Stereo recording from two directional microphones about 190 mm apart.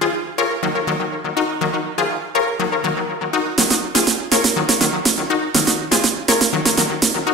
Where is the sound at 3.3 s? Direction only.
Centre (ahead or behind).